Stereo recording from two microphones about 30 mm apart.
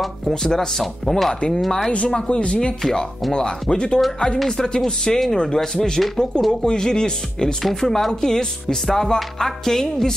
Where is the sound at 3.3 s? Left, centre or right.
Left.